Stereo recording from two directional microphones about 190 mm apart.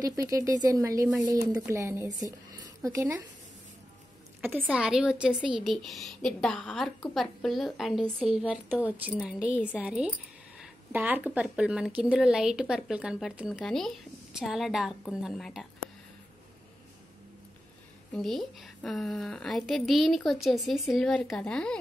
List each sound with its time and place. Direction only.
0.0 s speech: 20° right (ahead or behind)
4.4 s speech: 10° right (ahead or behind)
9.4 s a woman's voice: 10° left (ahead or behind)
9.8 s speech: 5° right (ahead or behind)
18.1 s speech: centre (ahead or behind)